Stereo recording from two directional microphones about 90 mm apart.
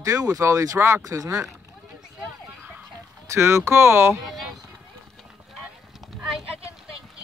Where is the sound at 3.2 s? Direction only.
30° right (ahead or behind).